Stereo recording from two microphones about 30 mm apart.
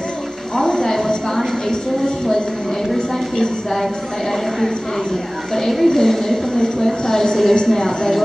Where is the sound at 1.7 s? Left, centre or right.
Left.